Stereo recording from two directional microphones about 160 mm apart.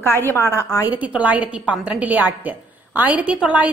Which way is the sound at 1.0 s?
10° right (ahead or behind).